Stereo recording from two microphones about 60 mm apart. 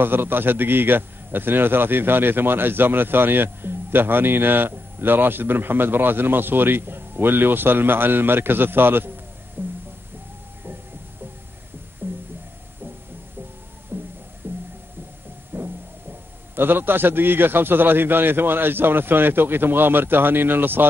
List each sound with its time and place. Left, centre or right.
0.0 s a man's voice: right
9.6 s music: right
12.0 s music: right
13.9 s music: right
16.5 s a man's voice: right